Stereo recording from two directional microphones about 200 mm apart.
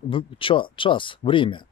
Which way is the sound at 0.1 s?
25° left (ahead or behind).